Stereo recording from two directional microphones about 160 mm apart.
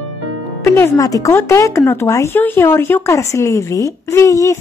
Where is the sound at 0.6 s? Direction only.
15° left (ahead or behind).